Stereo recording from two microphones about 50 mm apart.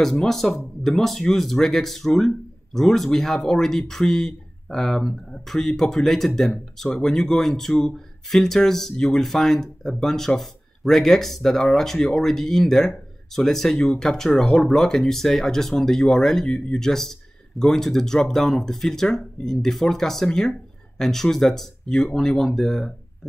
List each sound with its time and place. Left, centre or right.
0.0 s speech: centre